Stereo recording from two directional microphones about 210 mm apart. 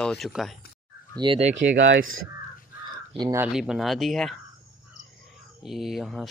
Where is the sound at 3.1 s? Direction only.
20° right (ahead or behind).